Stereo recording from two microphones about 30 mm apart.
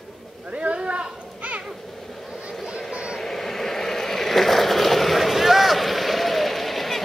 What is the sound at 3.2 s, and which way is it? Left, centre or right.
Vehicle, centre.